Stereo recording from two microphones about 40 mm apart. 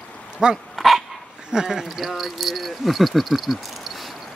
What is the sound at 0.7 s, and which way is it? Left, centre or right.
Dog, centre.